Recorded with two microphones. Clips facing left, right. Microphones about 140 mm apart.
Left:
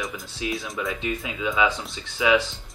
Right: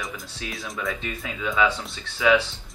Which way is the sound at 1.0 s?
15° left (ahead or behind).